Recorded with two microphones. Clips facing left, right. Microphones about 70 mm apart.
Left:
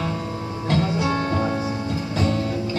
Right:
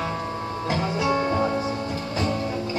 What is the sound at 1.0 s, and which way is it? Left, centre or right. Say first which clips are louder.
Music: even; centre.